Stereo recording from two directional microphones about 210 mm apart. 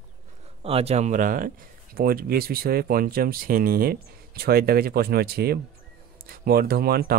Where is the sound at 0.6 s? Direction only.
30° right (ahead or behind).